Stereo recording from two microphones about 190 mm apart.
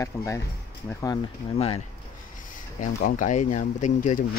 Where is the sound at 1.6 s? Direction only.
30° left (ahead or behind).